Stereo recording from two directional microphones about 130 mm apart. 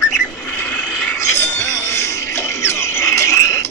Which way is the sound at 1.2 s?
20° left (ahead or behind).